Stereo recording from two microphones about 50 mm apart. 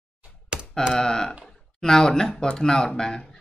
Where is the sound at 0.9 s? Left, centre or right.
Centre.